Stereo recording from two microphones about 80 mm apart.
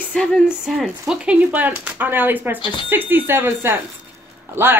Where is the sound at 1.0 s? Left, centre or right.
Centre.